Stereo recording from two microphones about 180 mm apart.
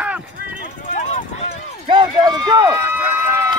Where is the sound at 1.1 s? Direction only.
40° left (ahead or behind).